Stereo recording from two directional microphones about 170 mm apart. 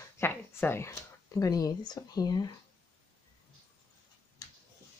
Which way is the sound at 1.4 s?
20° left (ahead or behind).